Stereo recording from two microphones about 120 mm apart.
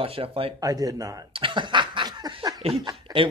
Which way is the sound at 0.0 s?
50° right (ahead or behind).